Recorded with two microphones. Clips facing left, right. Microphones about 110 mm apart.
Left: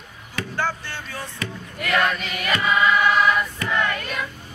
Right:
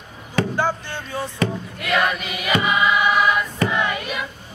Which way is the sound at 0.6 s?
15° right (ahead or behind).